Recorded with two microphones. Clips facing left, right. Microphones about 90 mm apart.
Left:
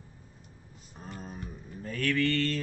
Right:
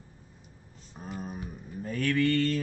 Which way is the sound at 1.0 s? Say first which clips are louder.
Right 4 dB; 10° right (ahead or behind).